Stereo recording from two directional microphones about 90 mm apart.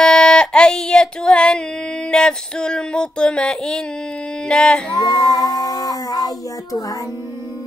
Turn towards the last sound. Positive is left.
turn(degrees=45)  # may be behind; listen again after turning